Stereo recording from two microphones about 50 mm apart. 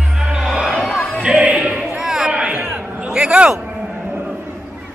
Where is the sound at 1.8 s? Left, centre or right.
Centre.